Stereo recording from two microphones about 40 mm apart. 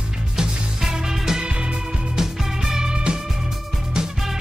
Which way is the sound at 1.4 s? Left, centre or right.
Right.